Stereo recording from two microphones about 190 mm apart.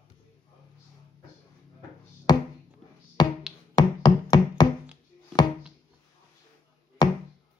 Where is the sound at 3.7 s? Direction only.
25° left (ahead or behind).